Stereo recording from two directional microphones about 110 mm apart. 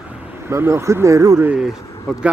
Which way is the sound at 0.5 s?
25° right (ahead or behind).